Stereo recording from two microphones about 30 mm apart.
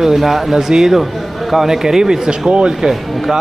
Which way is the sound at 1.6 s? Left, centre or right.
Centre.